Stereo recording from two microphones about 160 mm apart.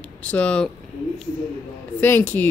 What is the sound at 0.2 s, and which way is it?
Speech, 10° left (ahead or behind).